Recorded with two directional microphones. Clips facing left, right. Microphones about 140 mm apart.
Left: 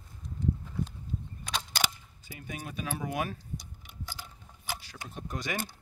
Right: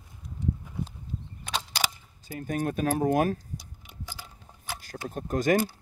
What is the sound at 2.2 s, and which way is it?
Speech, 45° right (ahead or behind).